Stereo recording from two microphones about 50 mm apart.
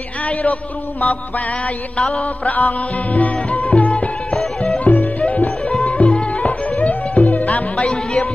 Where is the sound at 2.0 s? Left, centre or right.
Centre.